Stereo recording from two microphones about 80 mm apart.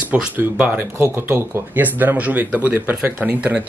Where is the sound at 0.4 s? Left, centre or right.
Centre.